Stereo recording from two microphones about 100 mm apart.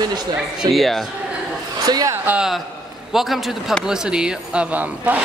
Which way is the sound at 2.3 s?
5° right (ahead or behind).